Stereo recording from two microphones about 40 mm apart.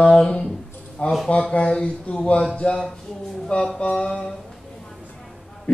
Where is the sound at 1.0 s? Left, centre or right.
Left.